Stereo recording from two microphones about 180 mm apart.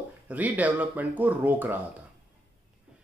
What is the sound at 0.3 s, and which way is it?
Speech, 10° right (ahead or behind).